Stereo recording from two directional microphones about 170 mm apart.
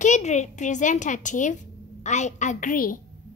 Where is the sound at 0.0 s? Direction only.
45° left (ahead or behind).